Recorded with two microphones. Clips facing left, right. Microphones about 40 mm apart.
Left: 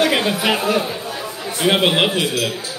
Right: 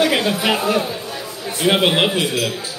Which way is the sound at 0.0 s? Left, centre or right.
Centre.